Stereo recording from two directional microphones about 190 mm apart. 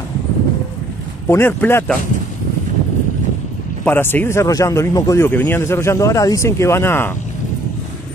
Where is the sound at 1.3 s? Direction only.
10° left (ahead or behind).